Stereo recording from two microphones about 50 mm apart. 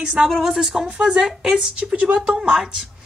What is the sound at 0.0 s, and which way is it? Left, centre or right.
A woman's voice, centre.